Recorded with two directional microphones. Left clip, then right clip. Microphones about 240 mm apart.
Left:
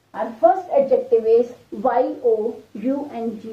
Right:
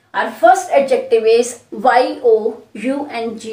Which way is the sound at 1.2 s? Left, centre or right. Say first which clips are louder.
Right 4 dB; centre.